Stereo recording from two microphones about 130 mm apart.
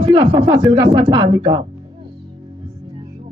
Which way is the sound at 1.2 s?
45° right (ahead or behind).